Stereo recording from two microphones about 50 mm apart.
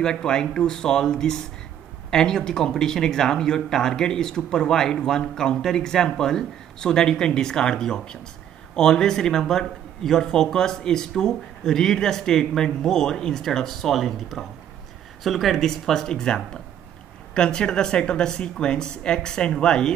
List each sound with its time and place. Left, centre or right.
0.0 s speech: centre